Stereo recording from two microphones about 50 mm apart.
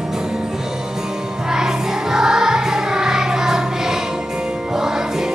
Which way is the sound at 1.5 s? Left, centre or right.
Centre.